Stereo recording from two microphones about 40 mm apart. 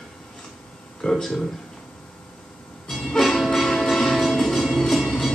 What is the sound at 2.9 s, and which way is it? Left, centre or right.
Music, centre.